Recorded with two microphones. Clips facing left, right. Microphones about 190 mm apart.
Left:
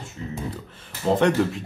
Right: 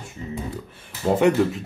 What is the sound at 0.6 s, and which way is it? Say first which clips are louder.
Speech: even; 10° right (ahead or behind).